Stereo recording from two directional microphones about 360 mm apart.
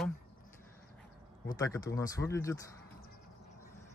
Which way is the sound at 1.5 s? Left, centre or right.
Centre.